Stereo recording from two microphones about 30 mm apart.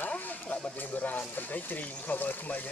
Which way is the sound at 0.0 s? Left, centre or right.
Left.